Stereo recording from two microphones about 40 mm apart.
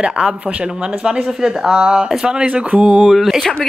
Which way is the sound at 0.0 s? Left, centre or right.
Right.